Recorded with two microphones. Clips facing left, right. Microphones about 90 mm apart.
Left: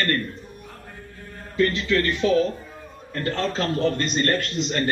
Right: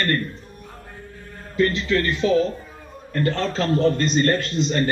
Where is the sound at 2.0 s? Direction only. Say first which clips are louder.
Right 1 dB; 5° left (ahead or behind).